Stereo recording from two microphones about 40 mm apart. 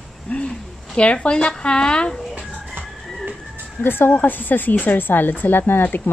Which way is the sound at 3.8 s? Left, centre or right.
Left.